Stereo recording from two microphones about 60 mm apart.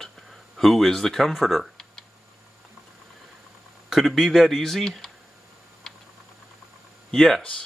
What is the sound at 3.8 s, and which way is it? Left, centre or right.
Speech, centre.